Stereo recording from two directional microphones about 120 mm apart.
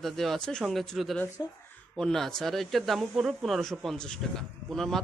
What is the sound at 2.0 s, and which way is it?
Speech, 5° left (ahead or behind).